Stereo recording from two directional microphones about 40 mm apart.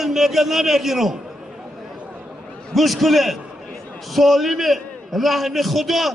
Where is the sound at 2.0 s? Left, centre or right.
Right.